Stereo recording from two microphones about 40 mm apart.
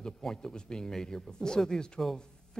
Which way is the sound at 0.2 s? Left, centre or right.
Centre.